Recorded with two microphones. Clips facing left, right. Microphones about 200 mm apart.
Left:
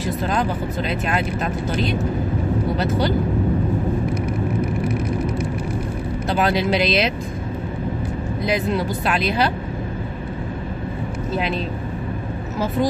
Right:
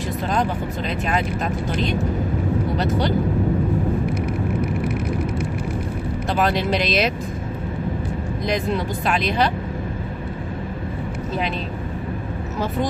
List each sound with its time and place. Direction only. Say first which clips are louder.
6.3 s speech: left 1 dB; centre (ahead or behind)
9.2 s speech: even; 5° left (ahead or behind)